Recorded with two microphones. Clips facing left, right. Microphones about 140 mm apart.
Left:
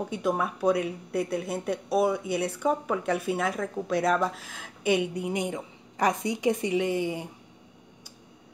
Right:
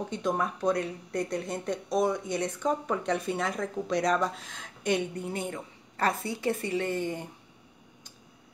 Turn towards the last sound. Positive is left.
turn(degrees=10)  # may be behind; listen again after turning